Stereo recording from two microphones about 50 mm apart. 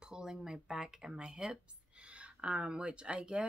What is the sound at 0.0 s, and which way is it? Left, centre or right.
Speech, centre.